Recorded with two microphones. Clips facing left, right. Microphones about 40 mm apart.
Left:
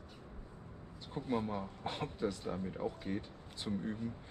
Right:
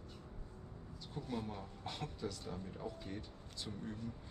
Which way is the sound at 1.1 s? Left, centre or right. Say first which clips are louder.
Left 7 dB; left.